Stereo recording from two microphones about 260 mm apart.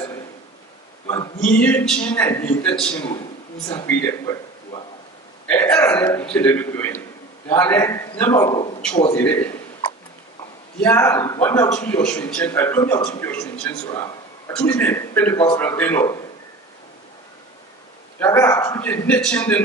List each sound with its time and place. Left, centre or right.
1.0 s a sound: centre
1.4 s a man's voice: centre
5.5 s a man's voice: centre
9.1 s a man's voice: centre
10.8 s a man's voice: centre
18.2 s a man's voice: centre